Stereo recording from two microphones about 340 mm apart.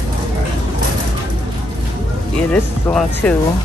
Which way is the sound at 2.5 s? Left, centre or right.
Centre.